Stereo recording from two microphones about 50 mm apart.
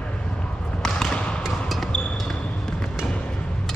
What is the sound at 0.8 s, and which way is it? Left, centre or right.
Basketball bounce, centre.